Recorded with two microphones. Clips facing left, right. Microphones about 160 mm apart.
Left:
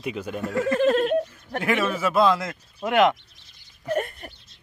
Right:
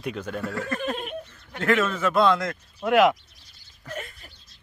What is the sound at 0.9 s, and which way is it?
Goat, 90° left.